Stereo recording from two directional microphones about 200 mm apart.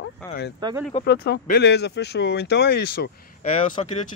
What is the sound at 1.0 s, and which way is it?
Speech, 55° left (ahead or behind).